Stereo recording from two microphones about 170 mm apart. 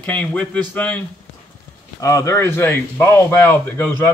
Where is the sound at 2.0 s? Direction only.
20° left (ahead or behind).